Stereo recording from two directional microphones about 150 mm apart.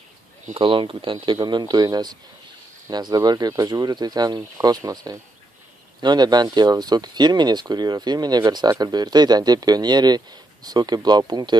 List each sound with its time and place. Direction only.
0.6 s speech: 35° right (ahead or behind)